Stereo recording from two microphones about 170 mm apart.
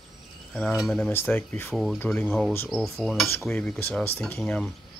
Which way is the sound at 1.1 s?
15° left (ahead or behind).